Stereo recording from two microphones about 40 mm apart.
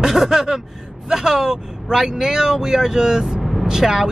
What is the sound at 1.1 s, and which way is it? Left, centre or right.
Speech, centre.